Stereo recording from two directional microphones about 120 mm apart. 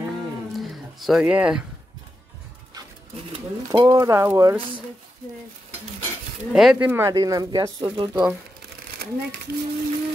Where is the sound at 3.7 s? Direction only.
25° right (ahead or behind).